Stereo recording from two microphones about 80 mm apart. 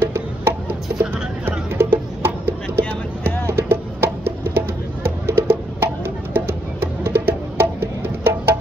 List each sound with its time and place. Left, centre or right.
0.0 s music: right